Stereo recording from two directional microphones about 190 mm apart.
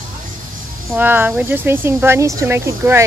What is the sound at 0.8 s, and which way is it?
Speech, 10° right (ahead or behind).